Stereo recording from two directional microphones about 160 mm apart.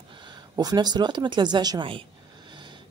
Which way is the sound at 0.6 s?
25° right (ahead or behind).